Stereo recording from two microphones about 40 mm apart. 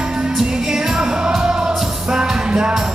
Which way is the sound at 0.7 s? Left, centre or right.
Centre.